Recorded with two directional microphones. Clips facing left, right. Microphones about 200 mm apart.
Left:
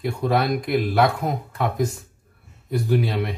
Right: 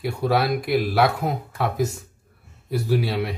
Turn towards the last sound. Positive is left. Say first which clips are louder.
# left 1 dB
turn(degrees=-5)  # may be behind; listen again after turning